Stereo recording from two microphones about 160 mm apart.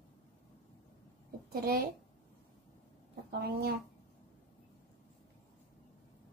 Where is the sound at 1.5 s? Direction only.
70° right (ahead or behind).